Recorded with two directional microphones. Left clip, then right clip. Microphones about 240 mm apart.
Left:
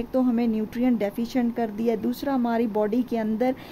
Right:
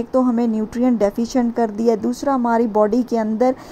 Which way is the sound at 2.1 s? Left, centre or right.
Centre.